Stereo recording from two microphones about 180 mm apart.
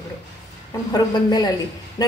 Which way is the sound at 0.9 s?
25° left (ahead or behind).